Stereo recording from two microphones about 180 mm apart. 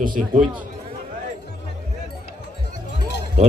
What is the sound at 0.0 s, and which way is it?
Speech, 50° right (ahead or behind).